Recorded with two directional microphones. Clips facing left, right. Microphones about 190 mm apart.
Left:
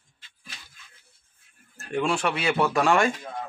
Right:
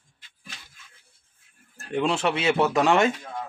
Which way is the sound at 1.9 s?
20° right (ahead or behind).